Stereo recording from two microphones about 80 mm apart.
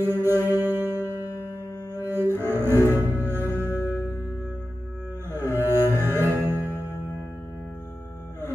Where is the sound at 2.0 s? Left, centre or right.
Right.